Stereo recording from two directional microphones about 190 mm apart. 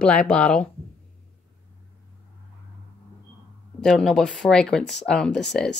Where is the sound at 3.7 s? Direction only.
Centre (ahead or behind).